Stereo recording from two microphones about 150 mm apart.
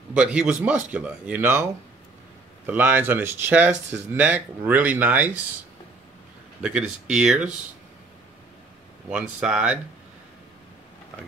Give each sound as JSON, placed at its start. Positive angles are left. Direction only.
{"t": 0.1, "sound": "speech", "side_deg": -5}
{"t": 6.6, "sound": "speech", "side_deg": -5}
{"t": 9.1, "sound": "speech", "side_deg": -5}